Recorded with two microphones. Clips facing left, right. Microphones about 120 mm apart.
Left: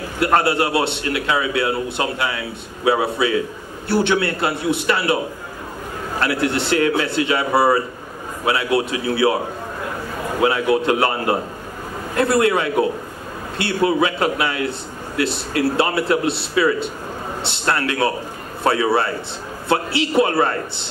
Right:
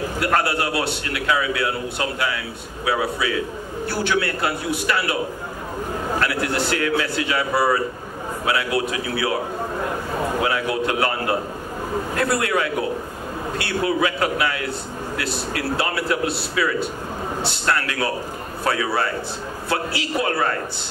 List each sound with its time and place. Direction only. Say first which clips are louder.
0.2 s a man's voice: left 5 dB; 25° left (ahead or behind)
6.2 s a man's voice: left 6 dB; 25° left (ahead or behind)
10.4 s a man's voice: left 10 dB; 25° left (ahead or behind)